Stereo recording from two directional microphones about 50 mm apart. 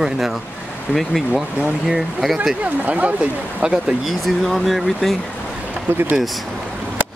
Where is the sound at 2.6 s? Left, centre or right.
Right.